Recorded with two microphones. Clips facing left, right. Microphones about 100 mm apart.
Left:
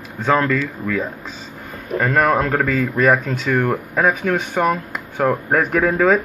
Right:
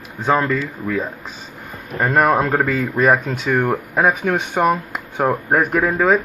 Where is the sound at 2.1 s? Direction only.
20° right (ahead or behind).